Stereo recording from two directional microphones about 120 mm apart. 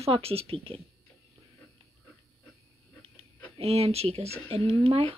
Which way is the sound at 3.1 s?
55° right (ahead or behind).